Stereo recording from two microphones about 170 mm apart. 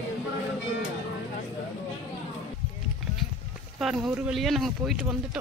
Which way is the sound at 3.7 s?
Centre (ahead or behind).